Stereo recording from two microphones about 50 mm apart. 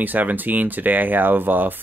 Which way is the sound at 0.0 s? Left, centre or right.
Right.